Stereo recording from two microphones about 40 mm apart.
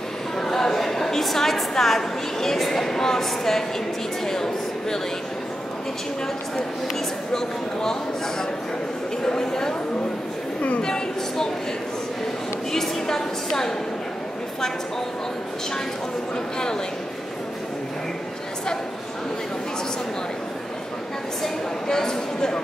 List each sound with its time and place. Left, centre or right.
0.4 s a woman's voice: centre
7.3 s speech: centre
10.8 s a woman's voice: centre
12.7 s speech: centre
21.4 s speech: centre